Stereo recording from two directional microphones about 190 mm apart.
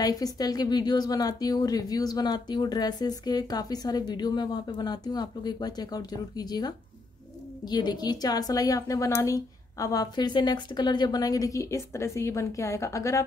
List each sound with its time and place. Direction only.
0.0 s a woman's voice: 20° left (ahead or behind)